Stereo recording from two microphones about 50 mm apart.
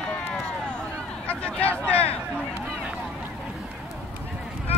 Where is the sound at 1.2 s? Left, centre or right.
Left.